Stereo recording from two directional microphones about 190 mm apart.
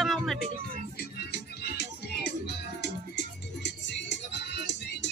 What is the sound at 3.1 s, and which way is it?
Music, 65° left (ahead or behind).